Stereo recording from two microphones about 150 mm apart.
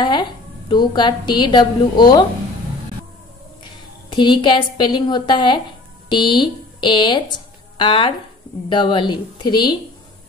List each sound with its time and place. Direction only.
0.0 s a woman's voice: 30° left (ahead or behind)
3.6 s a woman's voice: 30° left (ahead or behind)